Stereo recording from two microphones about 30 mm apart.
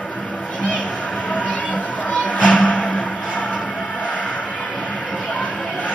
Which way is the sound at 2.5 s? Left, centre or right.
Left.